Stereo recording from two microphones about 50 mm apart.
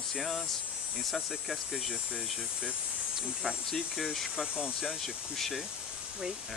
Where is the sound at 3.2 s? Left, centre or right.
Centre.